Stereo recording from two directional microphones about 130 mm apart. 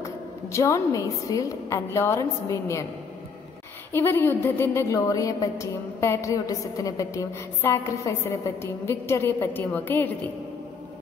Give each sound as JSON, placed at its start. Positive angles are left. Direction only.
{"t": 0.0, "sound": "a woman's voice", "side_deg": 20}
{"t": 3.9, "sound": "a woman's voice", "side_deg": 15}